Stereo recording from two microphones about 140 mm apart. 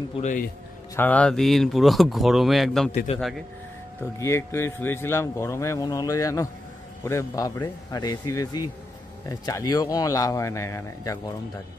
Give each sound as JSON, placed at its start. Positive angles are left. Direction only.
{"t": 0.2, "sound": "a man's voice", "side_deg": 70}
{"t": 0.9, "sound": "speech", "side_deg": 10}
{"t": 3.1, "sound": "a man's voice", "side_deg": 50}
{"t": 4.2, "sound": "speech", "side_deg": 20}